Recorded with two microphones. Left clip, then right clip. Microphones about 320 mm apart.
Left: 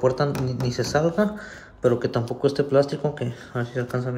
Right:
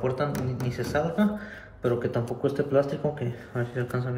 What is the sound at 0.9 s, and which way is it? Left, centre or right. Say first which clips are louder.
Speech: left 4 dB; centre.